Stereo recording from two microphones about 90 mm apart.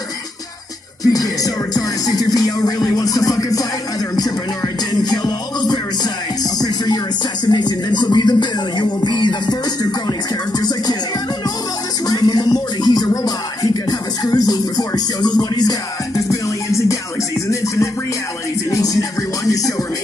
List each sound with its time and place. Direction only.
1.0 s music: 40° left (ahead or behind)
5.0 s music: 50° left (ahead or behind)
7.4 s music: 55° left (ahead or behind)
12.1 s music: 50° left (ahead or behind)
16.2 s music: 35° left (ahead or behind)
18.7 s music: 40° left (ahead or behind)